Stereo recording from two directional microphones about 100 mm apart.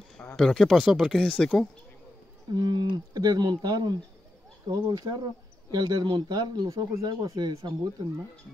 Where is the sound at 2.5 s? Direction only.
45° right (ahead or behind).